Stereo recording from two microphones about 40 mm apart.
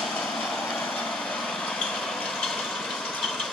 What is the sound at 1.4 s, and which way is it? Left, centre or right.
Vehicle, centre.